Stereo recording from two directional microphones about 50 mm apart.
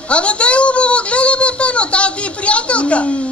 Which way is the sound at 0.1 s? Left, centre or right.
Left.